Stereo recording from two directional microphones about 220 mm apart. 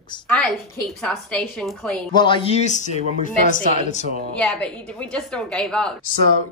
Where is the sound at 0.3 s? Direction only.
5° left (ahead or behind).